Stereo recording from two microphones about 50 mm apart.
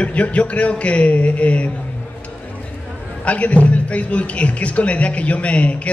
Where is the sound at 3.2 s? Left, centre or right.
Left.